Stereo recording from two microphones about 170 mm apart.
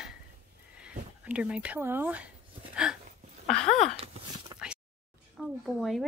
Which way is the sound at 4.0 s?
35° right (ahead or behind).